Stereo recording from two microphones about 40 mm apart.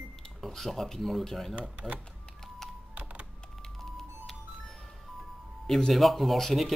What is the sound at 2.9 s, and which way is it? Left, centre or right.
Computer keyboard, right.